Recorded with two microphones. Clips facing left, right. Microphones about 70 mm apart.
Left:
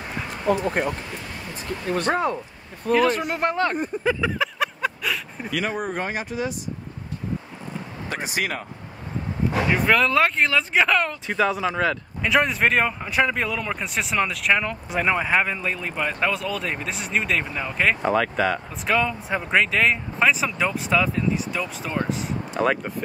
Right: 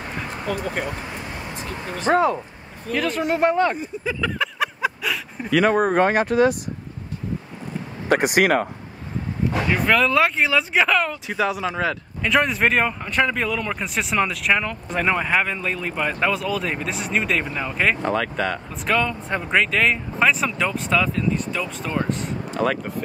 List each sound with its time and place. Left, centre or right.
0.5 s speech: left
2.0 s speech: centre
3.7 s speech: left
4.4 s a sound: centre
5.5 s speech: right
8.1 s speech: right
9.5 s speech: centre